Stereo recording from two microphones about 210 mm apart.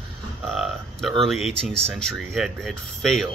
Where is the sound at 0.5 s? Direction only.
Centre (ahead or behind).